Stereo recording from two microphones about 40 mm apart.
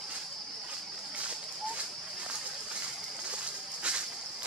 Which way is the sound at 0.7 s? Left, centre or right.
Right.